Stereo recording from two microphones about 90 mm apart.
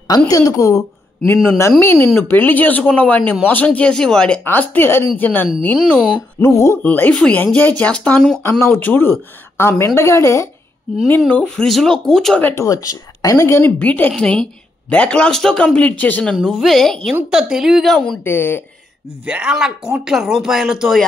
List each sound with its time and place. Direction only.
0.3 s speech: 40° left (ahead or behind)
1.2 s speech: 25° left (ahead or behind); by 4.4 s 5° left (ahead or behind)
4.5 s speech: 25° left (ahead or behind)
6.4 s speech: 30° left (ahead or behind)
6.8 s speech: 20° left (ahead or behind)
8.4 s speech: 25° left (ahead or behind)
11.1 s speech: 15° left (ahead or behind)
11.6 s speech: 5° left (ahead or behind)
12.4 s speech: 20° left (ahead or behind)
12.6 s speech: 40° left (ahead or behind); by 16.3 s 15° left (ahead or behind)
16.3 s speech: centre (ahead or behind)
17.3 s speech: 5° right (ahead or behind)
18.2 s speech: 25° left (ahead or behind)
19.2 s speech: 10° right (ahead or behind)